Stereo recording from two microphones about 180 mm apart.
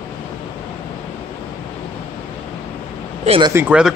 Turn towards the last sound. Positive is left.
turn(degrees=-5)  # may be behind; listen again after turning